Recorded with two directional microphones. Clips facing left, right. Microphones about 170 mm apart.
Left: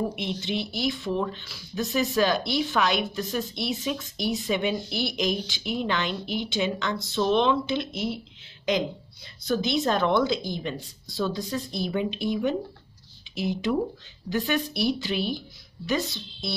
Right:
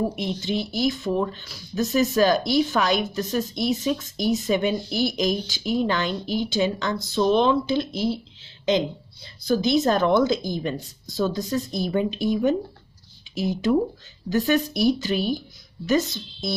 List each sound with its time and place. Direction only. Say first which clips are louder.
0.1 s a woman's voice: right 3 dB; 40° right (ahead or behind)